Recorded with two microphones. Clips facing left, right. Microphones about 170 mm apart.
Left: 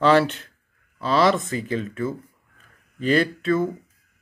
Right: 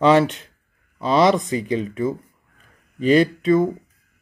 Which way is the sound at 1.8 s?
15° right (ahead or behind).